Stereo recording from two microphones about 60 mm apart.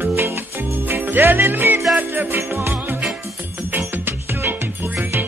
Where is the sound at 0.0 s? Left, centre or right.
Right.